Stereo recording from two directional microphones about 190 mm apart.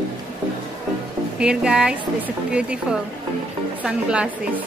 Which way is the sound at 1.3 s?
5° right (ahead or behind).